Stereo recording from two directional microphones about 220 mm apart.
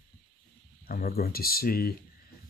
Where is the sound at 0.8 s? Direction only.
45° left (ahead or behind).